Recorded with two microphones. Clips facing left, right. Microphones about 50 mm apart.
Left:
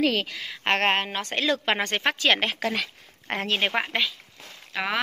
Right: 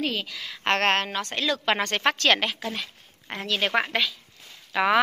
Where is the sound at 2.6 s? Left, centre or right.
Left.